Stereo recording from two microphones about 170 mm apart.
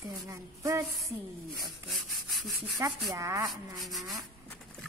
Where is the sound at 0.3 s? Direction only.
20° right (ahead or behind).